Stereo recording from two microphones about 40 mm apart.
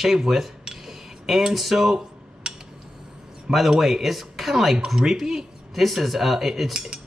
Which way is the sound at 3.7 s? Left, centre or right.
Centre.